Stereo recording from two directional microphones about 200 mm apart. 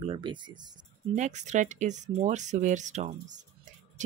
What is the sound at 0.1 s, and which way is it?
Speech, 25° right (ahead or behind).